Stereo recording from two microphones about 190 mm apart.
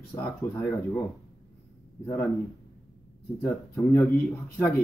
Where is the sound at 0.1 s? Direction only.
10° left (ahead or behind).